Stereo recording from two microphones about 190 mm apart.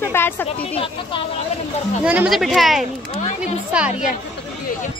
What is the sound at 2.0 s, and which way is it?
Speech, 5° right (ahead or behind).